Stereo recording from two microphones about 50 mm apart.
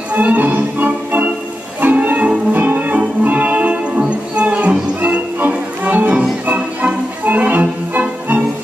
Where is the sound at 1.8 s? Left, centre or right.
Right.